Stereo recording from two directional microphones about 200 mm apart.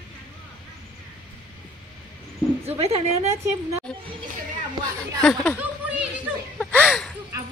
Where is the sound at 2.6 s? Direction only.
30° right (ahead or behind).